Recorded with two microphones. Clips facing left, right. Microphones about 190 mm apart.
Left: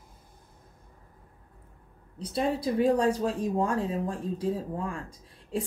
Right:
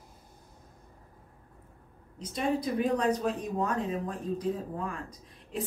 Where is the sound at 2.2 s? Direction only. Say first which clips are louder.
Left 2 dB; 30° left (ahead or behind).